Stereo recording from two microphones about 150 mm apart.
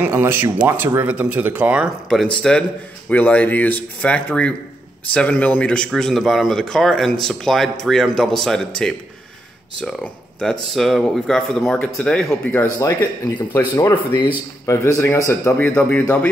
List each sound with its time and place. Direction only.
0.0 s speech: 15° right (ahead or behind)
2.0 s speech: 5° left (ahead or behind)
10.4 s speech: centre (ahead or behind)
13.5 s speech: 25° left (ahead or behind)
15.6 s speech: 5° left (ahead or behind)